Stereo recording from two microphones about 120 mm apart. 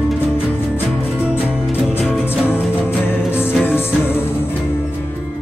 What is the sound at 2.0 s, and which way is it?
Music, 10° right (ahead or behind).